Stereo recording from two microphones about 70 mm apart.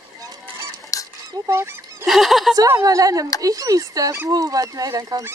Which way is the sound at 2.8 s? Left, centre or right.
Right.